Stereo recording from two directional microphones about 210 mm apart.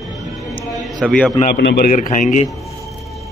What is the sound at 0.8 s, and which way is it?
Speech, centre (ahead or behind).